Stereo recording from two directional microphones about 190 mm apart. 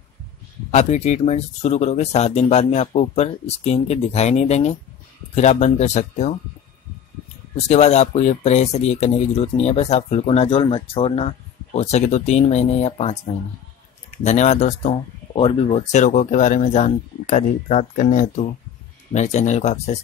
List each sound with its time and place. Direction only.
0.7 s speech: 35° left (ahead or behind)
7.5 s speech: 35° left (ahead or behind)
14.2 s speech: 35° left (ahead or behind)